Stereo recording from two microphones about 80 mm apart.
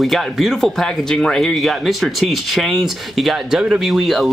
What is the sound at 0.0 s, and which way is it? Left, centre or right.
Speech, centre.